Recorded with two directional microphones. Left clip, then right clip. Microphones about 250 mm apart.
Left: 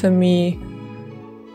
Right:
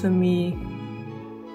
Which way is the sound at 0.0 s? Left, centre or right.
Left.